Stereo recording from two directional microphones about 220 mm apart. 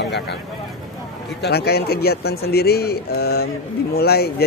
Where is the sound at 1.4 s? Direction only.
45° left (ahead or behind).